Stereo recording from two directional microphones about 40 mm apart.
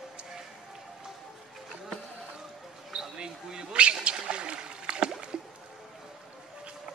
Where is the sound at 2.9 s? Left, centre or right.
Centre.